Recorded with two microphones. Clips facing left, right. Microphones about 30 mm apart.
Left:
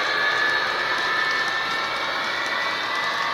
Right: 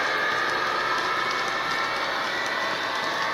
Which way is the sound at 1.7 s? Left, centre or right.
Left.